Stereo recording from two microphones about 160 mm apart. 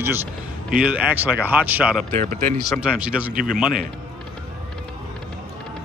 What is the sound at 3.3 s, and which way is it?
Speech, 60° right (ahead or behind).